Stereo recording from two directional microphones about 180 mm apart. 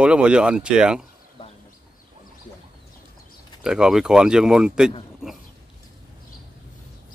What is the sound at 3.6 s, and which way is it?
Speech, 5° right (ahead or behind).